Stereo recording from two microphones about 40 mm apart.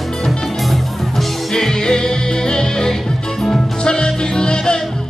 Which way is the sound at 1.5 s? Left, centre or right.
Centre.